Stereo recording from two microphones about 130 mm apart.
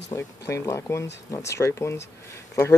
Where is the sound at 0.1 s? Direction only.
25° left (ahead or behind).